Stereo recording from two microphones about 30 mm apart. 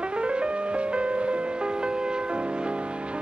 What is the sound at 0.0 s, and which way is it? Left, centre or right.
Music, right.